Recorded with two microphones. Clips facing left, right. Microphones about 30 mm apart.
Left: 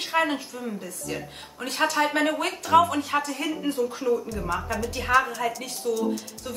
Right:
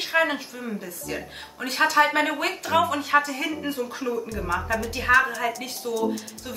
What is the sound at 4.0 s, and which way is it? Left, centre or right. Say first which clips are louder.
A woman's voice: left 2 dB; centre.